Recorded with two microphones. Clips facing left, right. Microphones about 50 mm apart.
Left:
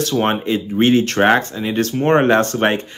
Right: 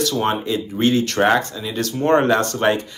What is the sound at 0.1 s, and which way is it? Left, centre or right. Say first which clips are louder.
Speech: left 3 dB; left.